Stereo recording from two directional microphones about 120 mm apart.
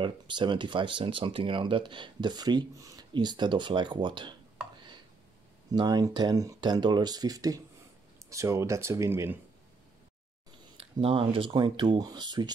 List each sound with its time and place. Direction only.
0.0 s speech: 40° right (ahead or behind)
5.7 s speech: 35° right (ahead or behind)
10.8 s speech: 50° right (ahead or behind)